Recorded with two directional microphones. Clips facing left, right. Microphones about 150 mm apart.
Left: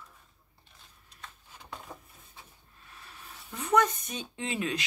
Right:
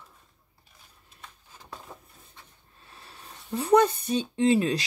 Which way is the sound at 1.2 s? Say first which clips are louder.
Even; centre (ahead or behind).